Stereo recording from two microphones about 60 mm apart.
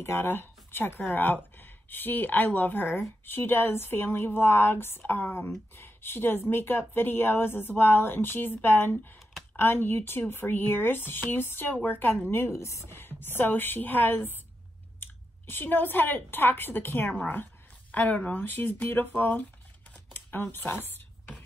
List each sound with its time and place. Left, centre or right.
0.0 s speech: left
12.3 s speech: left
20.1 s a sound: left
20.5 s speech: left